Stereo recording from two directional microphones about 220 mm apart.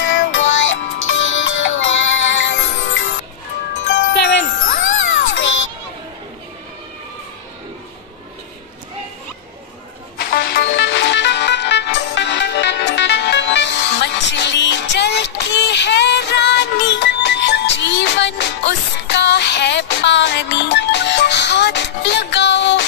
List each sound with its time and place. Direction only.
0.0 s music: 60° left (ahead or behind)
10.3 s music: 45° left (ahead or behind)